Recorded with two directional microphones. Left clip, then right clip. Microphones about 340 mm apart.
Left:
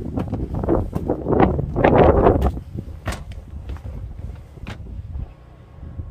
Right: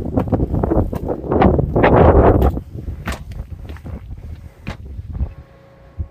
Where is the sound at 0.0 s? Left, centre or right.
Centre.